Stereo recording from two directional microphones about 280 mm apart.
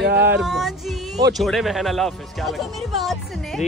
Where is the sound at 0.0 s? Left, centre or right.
Right.